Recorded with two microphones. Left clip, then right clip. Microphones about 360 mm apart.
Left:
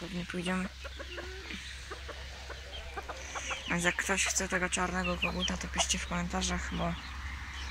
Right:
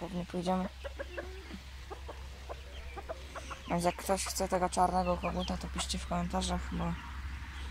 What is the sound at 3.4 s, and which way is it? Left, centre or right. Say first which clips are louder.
Speech: left 1 dB; centre.